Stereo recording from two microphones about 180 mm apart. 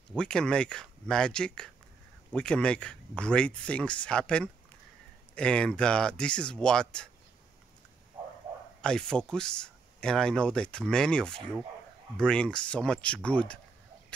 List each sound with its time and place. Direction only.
0.1 s speech: 5° left (ahead or behind)
8.8 s speech: 5° left (ahead or behind)